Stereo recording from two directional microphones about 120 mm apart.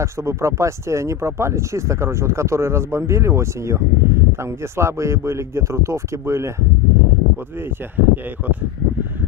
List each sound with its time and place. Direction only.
0.0 s speech: 25° right (ahead or behind)
7.9 s speech: 15° right (ahead or behind)